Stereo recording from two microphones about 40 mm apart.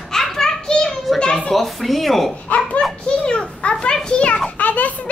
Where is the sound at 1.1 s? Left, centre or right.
Left.